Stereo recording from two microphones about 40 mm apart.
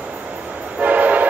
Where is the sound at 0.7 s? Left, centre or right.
Right.